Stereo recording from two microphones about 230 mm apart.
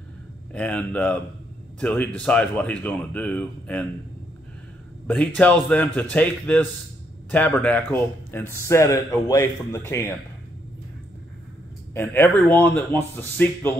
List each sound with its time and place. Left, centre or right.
0.5 s a man's voice: centre
5.0 s a man's voice: centre
11.9 s speech: centre